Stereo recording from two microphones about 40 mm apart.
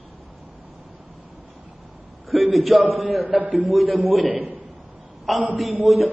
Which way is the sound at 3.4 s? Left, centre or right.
Right.